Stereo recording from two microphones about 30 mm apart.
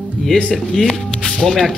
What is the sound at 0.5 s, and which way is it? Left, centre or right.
Speech, left.